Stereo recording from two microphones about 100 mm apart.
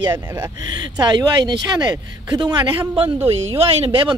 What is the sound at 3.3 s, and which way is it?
Speech, 80° right.